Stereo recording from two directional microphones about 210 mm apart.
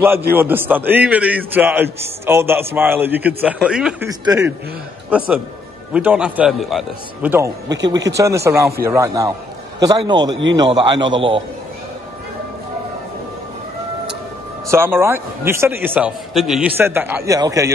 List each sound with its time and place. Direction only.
0.3 s a man's voice: 10° right (ahead or behind)
4.2 s a man's voice: 15° right (ahead or behind)
5.9 s a man's voice: 5° right (ahead or behind)
10.3 s a man's voice: 60° right (ahead or behind)
10.6 s a man's voice: 20° right (ahead or behind)
14.7 s a man's voice: 10° right (ahead or behind)